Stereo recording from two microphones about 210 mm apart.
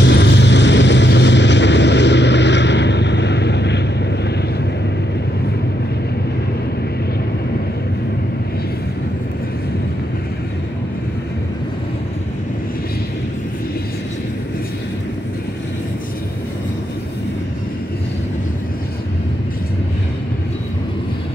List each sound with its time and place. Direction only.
0.0 s vehicle: 55° left (ahead or behind)